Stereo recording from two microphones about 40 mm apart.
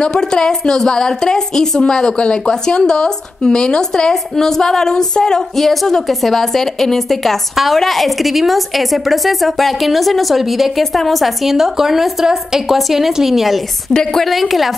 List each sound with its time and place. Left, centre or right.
0.0 s a woman's voice: centre
4.1 s a woman's voice: centre
5.6 s a woman's voice: centre
13.9 s a woman's voice: centre